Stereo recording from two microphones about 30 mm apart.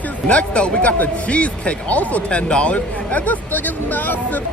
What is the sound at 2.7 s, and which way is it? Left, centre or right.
Speech, left.